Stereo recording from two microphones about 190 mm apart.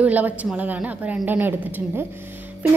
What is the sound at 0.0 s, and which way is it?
A woman's voice, 10° right (ahead or behind).